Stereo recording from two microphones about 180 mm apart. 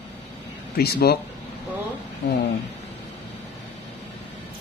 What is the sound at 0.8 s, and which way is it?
Speech, 60° left (ahead or behind).